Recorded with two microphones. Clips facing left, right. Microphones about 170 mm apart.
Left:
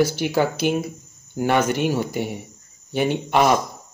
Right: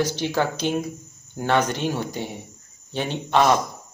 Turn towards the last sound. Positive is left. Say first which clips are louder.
# left 2 dB
turn(degrees=10)  # may be behind; listen again after turning